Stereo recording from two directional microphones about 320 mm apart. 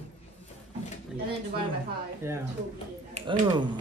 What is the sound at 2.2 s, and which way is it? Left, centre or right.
A man's voice, centre.